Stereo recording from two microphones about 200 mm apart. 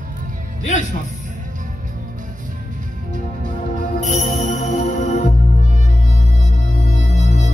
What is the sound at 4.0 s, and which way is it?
Music, 40° left (ahead or behind).